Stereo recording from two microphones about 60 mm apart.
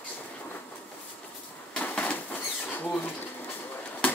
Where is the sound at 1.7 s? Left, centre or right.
Left.